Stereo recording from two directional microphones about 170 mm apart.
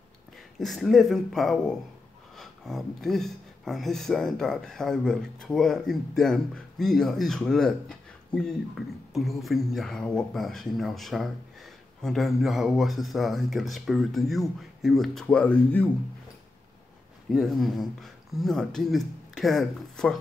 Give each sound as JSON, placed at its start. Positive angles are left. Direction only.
{"t": 0.6, "sound": "speech", "side_deg": 0}
{"t": 17.3, "sound": "speech", "side_deg": 0}